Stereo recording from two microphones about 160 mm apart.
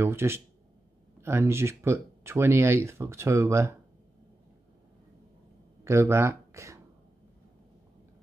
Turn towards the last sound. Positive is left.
turn(degrees=-20)  # may be behind; listen again after turning